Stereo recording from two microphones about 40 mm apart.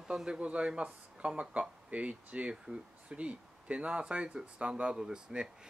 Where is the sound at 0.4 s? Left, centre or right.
Right.